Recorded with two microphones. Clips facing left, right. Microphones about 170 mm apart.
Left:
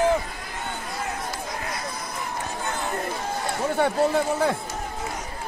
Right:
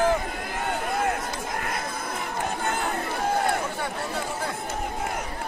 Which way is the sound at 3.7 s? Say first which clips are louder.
Left 10 dB; 60° left (ahead or behind).